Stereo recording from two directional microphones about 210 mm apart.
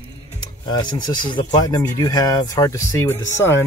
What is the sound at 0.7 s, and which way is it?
Speech, 20° left (ahead or behind).